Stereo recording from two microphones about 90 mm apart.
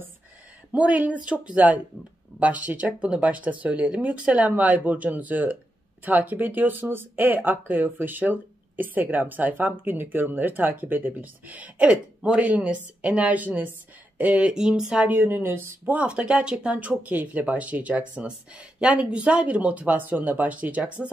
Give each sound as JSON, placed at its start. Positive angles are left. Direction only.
{"t": 0.7, "sound": "speech", "side_deg": -15}
{"t": 15.1, "sound": "speech", "side_deg": -25}
{"t": 15.8, "sound": "speech", "side_deg": -15}